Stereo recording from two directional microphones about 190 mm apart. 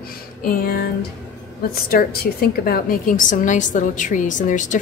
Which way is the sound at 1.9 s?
50° left (ahead or behind).